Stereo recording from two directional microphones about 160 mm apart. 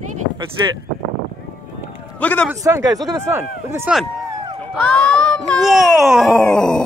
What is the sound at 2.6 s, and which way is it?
Speech, 20° right (ahead or behind).